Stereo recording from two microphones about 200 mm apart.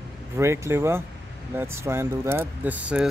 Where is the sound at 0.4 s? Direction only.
15° right (ahead or behind).